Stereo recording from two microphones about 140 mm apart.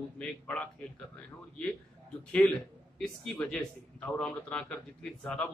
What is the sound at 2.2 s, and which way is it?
A man's voice, 5° left (ahead or behind).